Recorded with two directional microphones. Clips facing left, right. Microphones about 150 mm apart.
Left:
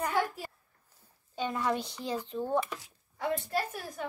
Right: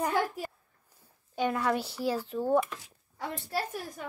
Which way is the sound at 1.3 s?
10° right (ahead or behind).